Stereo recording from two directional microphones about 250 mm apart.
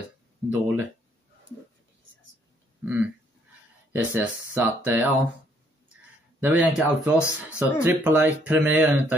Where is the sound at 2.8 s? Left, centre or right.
Centre.